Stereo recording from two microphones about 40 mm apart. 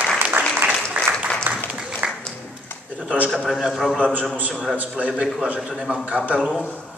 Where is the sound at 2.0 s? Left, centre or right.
Right.